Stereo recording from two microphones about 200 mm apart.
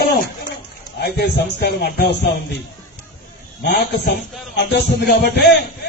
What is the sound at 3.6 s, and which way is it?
A man's voice, 55° left (ahead or behind).